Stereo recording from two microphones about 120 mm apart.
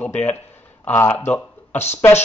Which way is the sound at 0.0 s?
15° left (ahead or behind).